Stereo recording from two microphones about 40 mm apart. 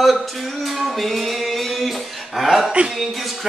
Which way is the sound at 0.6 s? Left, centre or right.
Centre.